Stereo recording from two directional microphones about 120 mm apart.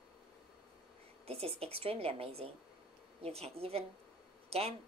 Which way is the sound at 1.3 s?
55° right (ahead or behind).